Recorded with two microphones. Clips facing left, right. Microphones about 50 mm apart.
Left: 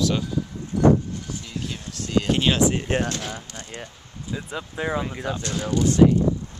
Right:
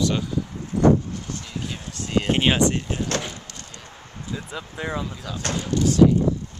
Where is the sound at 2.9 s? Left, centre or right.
Left.